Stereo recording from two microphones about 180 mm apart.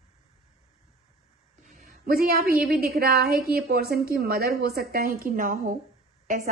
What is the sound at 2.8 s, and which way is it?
A woman's voice, 55° right (ahead or behind).